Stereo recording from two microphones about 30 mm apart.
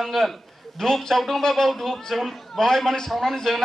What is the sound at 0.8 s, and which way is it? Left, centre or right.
A man's voice, centre.